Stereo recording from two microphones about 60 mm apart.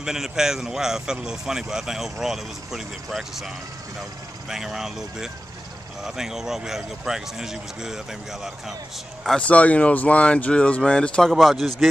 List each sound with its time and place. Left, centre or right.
0.0 s speech: centre
9.4 s speech: left; by 11.7 s centre